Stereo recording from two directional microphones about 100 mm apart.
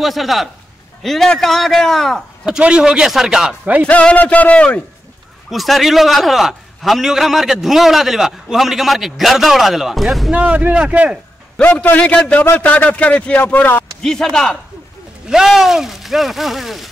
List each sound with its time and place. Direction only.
0.0 s a man's voice: centre (ahead or behind)
3.8 s a man's voice: 10° left (ahead or behind)
5.5 s a man's voice: centre (ahead or behind)
10.3 s speech: 15° right (ahead or behind)
11.5 s a man's voice: 15° left (ahead or behind)
14.0 s a man's voice: 5° left (ahead or behind)
15.2 s a man's voice: 5° right (ahead or behind)